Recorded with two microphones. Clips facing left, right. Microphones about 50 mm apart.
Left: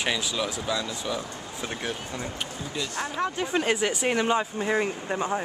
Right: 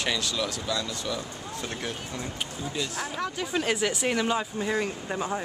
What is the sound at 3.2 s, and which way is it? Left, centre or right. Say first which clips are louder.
Speech: left 3 dB; centre.